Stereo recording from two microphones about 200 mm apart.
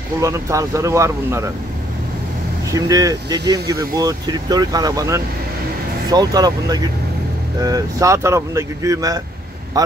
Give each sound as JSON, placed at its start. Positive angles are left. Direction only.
{"t": 0.2, "sound": "speech", "side_deg": -15}
{"t": 2.7, "sound": "speech", "side_deg": -15}